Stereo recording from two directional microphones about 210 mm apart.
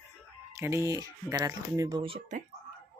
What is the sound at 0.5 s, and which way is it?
Speech, 15° right (ahead or behind).